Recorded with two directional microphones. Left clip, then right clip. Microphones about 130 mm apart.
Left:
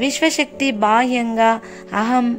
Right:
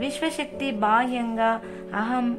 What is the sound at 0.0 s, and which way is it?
A woman's voice, 40° left (ahead or behind).